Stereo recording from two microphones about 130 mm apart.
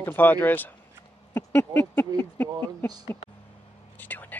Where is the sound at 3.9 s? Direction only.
15° left (ahead or behind).